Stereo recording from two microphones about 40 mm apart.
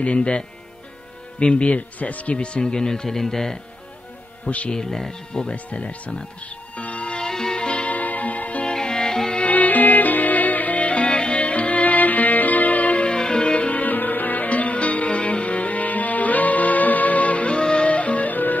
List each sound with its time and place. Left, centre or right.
0.0 s speech: left
2.3 s speech: left
4.6 s speech: centre
5.7 s speech: left
6.7 s music: left
7.9 s music: left
8.6 s music: centre
9.5 s music: left
13.1 s music: left
13.7 s music: left